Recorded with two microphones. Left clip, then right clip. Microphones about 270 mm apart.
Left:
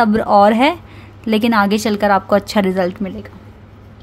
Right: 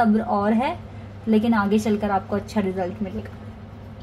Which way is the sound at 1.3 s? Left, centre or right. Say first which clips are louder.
Left 6 dB; left.